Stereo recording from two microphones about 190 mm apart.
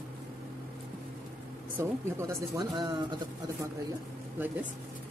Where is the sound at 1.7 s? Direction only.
15° right (ahead or behind).